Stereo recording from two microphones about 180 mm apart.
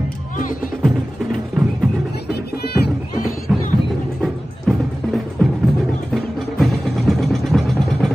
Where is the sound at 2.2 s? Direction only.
65° left (ahead or behind).